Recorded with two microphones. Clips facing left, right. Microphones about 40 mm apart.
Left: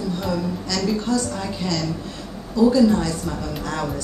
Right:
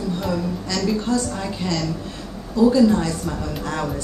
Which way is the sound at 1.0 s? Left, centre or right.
Centre.